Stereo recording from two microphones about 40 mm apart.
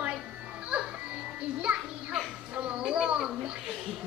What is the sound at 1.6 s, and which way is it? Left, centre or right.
Children playing, right.